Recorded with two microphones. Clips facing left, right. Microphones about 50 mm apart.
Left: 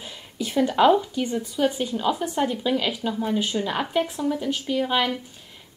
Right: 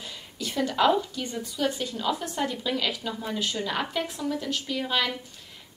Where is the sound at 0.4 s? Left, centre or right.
Centre.